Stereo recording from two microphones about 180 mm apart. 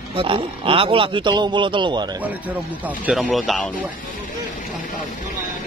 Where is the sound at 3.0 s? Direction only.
5° right (ahead or behind).